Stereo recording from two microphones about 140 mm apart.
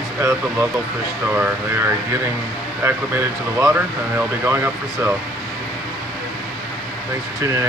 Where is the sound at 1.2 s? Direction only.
10° right (ahead or behind).